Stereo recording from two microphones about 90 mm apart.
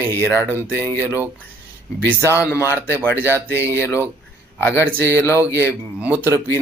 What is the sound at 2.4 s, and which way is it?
Speech, 30° left (ahead or behind).